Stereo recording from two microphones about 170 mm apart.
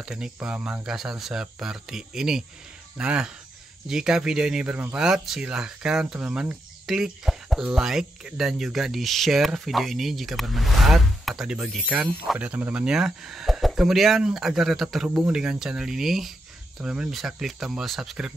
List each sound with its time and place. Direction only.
0.0 s speech: 5° right (ahead or behind)